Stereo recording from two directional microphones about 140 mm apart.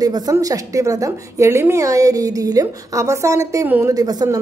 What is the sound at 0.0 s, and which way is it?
Speech, 25° right (ahead or behind).